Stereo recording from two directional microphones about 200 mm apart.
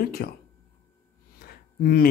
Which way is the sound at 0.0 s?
50° left (ahead or behind).